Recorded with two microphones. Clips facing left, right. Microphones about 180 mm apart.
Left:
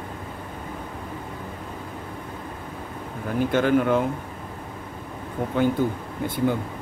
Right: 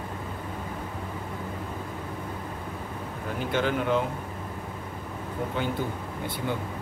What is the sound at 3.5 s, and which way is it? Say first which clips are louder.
Speech: left 5 dB; 50° left (ahead or behind).